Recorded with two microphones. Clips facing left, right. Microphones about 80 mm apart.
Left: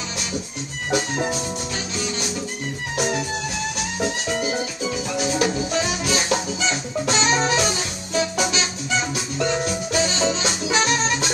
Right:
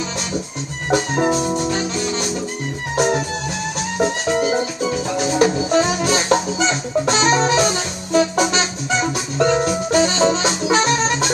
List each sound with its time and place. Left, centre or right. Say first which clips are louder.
0.8 s music: right 6 dB; right